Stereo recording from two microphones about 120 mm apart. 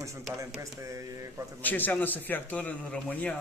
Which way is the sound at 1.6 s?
15° left (ahead or behind).